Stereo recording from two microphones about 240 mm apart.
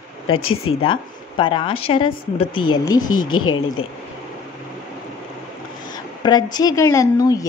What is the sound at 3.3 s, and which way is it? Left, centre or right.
Speech, left.